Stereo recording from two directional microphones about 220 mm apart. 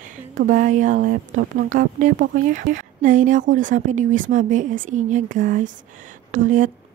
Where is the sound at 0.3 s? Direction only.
35° right (ahead or behind).